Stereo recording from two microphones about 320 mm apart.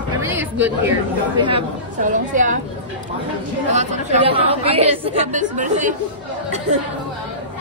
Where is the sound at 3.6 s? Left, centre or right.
Right.